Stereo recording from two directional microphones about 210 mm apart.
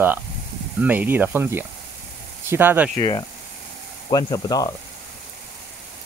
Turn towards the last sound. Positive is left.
turn(degrees=15)  # may be behind; listen again after turning